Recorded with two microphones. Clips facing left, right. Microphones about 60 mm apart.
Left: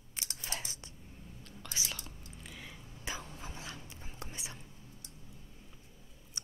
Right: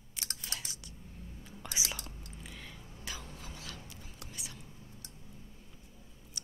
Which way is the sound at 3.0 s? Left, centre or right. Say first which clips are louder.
Left 3 dB; left.